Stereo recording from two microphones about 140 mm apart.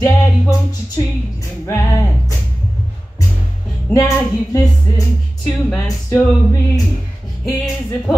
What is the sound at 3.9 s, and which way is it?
Music, 20° left (ahead or behind).